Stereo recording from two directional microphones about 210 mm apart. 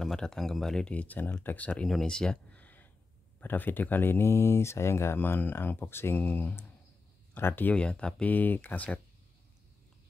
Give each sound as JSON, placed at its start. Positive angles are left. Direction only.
{"t": 0.0, "sound": "speech", "side_deg": 5}